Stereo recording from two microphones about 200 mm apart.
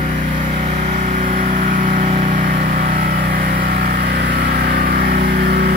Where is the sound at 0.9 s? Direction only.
40° right (ahead or behind).